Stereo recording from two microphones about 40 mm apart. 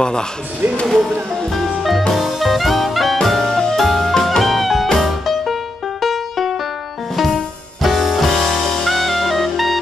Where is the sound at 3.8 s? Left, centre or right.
Centre.